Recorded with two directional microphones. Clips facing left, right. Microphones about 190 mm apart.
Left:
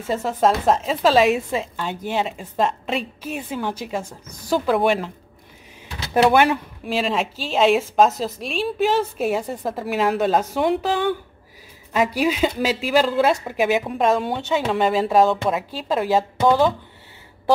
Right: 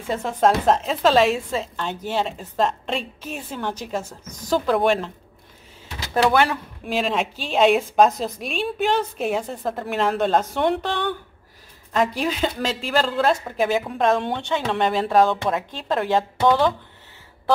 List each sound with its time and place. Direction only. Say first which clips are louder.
0.0 s a woman's voice: even; 5° left (ahead or behind)
6.3 s a woman's voice: left 3 dB; 20° left (ahead or behind)
6.8 s a woman's voice: right 2 dB; centre (ahead or behind)